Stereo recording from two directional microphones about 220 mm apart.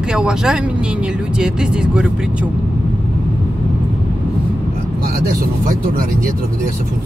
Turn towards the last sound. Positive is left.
turn(degrees=-40)  # may be behind; listen again after turning